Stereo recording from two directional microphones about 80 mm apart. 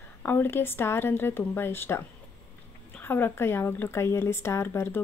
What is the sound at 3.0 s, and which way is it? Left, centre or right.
Speech, left.